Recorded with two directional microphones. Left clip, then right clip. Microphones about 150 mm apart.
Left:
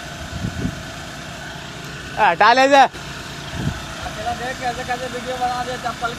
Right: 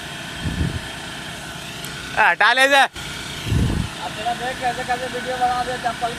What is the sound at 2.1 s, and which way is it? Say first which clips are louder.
Speech: left 2 dB; 5° right (ahead or behind).